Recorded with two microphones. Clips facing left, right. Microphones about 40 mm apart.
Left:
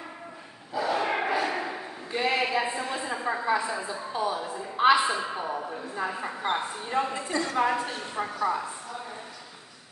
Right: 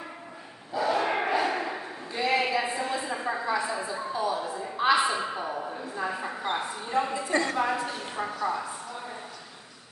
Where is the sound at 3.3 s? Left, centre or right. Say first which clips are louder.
Left 2 dB; left.